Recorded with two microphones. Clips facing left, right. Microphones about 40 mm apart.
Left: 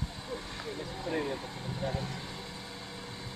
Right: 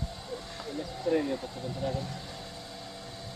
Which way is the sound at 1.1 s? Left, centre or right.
Centre.